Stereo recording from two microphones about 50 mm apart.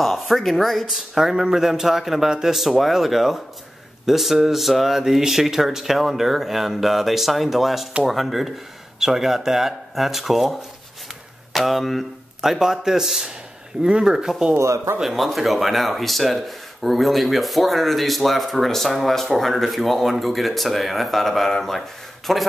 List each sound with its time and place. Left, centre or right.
0.0 s speech: centre
14.6 s speech: right
15.0 s speech: centre